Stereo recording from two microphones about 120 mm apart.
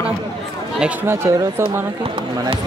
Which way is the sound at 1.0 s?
20° right (ahead or behind).